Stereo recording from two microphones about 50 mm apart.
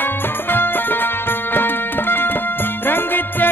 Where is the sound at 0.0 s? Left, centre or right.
Left.